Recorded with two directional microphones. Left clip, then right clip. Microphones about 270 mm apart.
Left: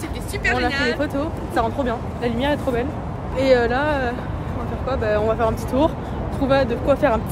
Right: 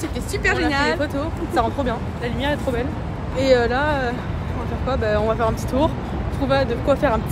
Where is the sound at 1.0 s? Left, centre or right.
Centre.